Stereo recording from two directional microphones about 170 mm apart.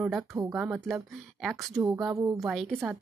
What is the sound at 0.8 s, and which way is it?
Speech, centre (ahead or behind).